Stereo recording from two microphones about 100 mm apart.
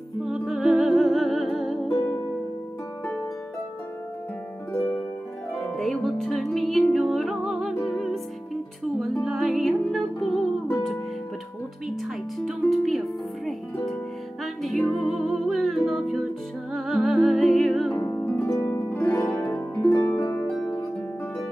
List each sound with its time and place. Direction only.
0.2 s music: centre (ahead or behind)
5.6 s music: centre (ahead or behind)
11.9 s music: centre (ahead or behind)
14.4 s music: centre (ahead or behind)
17.9 s harp: 30° left (ahead or behind)
18.2 s harp: 15° left (ahead or behind)
20.4 s harp: 10° left (ahead or behind)